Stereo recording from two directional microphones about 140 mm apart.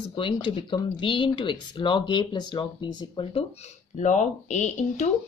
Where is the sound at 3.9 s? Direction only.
60° left (ahead or behind).